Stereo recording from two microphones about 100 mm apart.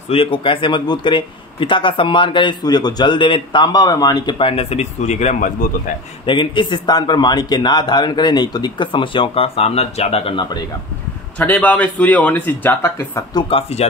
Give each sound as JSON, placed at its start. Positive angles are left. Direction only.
{"t": 0.1, "sound": "a man's voice", "side_deg": 65}
{"t": 3.6, "sound": "speech", "side_deg": 40}
{"t": 4.4, "sound": "speech", "side_deg": 75}
{"t": 6.2, "sound": "a man's voice", "side_deg": 55}
{"t": 11.3, "sound": "a man's voice", "side_deg": 15}
{"t": 13.5, "sound": "speech", "side_deg": 80}